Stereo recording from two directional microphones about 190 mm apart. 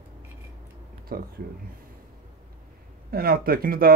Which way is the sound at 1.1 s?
50° right (ahead or behind).